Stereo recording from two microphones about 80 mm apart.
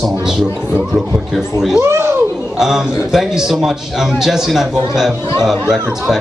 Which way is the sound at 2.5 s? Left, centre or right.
Centre.